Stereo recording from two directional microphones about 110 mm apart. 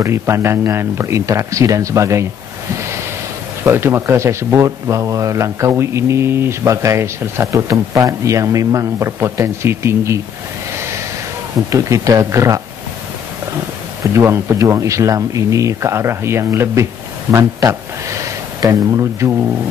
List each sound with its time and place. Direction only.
0.0 s speech: 25° right (ahead or behind)
3.6 s speech: 20° right (ahead or behind)
11.7 s speech: 30° right (ahead or behind)
14.1 s speech: 25° right (ahead or behind)